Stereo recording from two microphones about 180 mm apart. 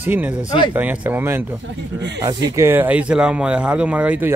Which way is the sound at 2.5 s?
10° right (ahead or behind).